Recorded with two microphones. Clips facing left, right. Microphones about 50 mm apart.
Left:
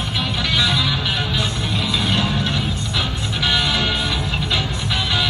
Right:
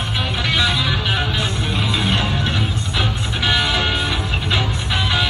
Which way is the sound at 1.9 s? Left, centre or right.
Centre.